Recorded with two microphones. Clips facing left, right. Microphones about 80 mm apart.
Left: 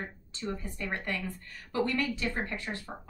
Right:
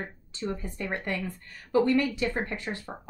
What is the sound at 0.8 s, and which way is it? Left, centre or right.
Speech, centre.